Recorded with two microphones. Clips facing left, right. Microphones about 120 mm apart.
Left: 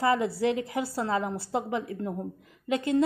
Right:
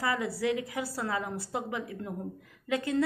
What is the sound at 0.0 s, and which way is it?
A woman's voice, 25° left (ahead or behind).